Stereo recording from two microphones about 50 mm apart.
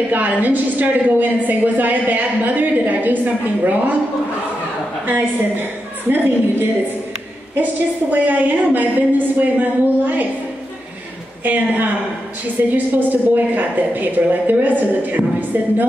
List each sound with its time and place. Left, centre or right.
0.1 s a woman's voice: right
5.0 s a woman's voice: right
8.1 s a woman's voice: right
11.4 s a woman's voice: right